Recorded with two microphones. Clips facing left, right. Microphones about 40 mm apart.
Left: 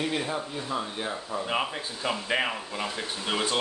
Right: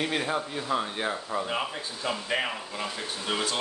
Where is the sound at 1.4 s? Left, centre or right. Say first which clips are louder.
Left 2 dB; centre.